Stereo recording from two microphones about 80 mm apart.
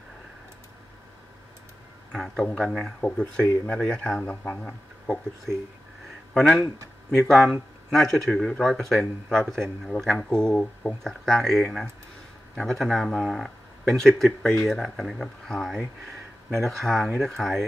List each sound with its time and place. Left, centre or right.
2.1 s speech: centre
6.3 s speech: centre